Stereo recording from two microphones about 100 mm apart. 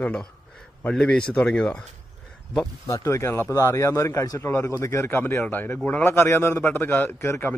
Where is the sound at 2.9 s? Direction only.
30° left (ahead or behind).